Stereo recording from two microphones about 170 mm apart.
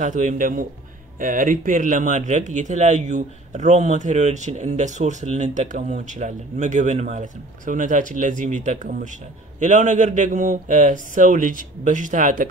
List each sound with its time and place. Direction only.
0.0 s speech: 45° right (ahead or behind)